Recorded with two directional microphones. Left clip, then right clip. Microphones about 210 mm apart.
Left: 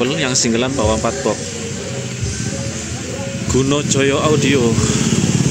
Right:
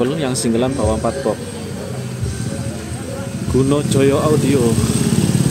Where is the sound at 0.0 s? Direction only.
10° right (ahead or behind).